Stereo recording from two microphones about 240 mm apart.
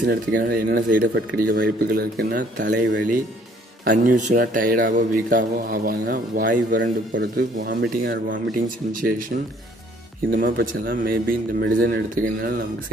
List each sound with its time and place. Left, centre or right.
0.0 s speech: right
10.4 s speech: right